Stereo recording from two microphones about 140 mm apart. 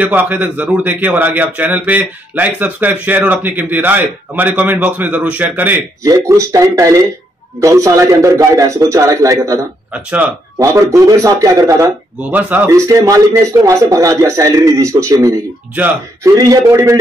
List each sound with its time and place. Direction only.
0.0 s a man's voice: 10° right (ahead or behind)
9.9 s a man's voice: 10° right (ahead or behind)
10.6 s speech: 20° right (ahead or behind)
12.2 s speech: 10° right (ahead or behind)